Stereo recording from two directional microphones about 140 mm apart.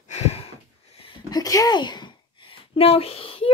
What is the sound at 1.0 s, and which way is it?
Speech, 25° left (ahead or behind).